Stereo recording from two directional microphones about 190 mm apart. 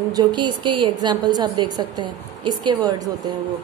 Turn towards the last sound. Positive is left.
turn(degrees=-20)  # may be behind; listen again after turning